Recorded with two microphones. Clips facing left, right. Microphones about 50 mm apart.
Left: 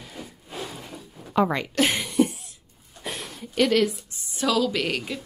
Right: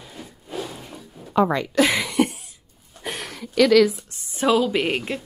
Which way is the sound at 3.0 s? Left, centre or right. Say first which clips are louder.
Right 3 dB; right.